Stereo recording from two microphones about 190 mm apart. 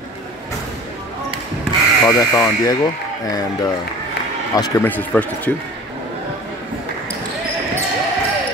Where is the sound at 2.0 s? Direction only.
20° left (ahead or behind).